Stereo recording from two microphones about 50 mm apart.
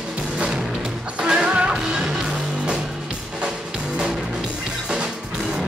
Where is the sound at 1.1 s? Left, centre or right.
Centre.